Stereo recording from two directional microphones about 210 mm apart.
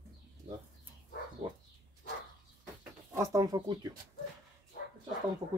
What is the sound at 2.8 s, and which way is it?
Speech, 15° right (ahead or behind).